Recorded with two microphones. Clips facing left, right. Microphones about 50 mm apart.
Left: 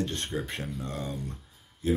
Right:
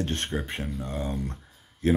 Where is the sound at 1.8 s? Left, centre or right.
Right.